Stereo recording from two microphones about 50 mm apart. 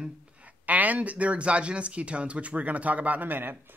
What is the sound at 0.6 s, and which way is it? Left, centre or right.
Speech, right.